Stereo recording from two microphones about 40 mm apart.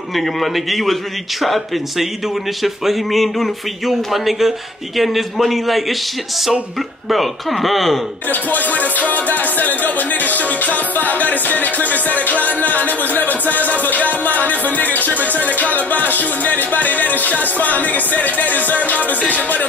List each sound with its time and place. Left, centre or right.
0.1 s speech: centre
7.1 s speech: centre
8.3 s music: left